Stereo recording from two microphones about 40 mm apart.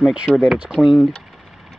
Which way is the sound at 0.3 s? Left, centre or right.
Centre.